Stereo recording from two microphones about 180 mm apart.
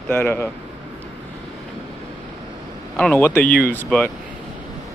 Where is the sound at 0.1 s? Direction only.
10° left (ahead or behind).